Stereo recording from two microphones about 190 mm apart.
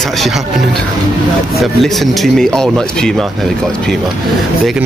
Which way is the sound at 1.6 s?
Centre (ahead or behind).